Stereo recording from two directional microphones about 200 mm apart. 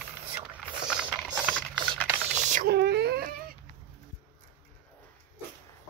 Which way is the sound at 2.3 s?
40° right (ahead or behind).